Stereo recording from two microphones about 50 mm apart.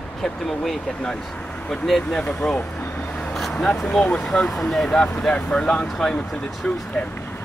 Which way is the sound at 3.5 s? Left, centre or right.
Centre.